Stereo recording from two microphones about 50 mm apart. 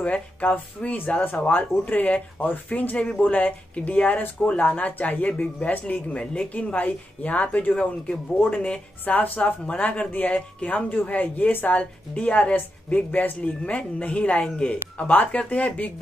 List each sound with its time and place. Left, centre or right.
0.0 s speech: left
9.0 s speech: left
12.5 s speech: left